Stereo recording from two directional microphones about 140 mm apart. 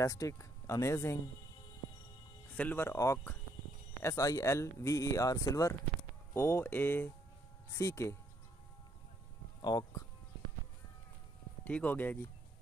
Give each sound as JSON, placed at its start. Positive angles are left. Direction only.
{"t": 0.0, "sound": "speech", "side_deg": 25}
{"t": 2.5, "sound": "speech", "side_deg": 10}
{"t": 9.6, "sound": "speech", "side_deg": 30}
{"t": 11.6, "sound": "speech", "side_deg": 10}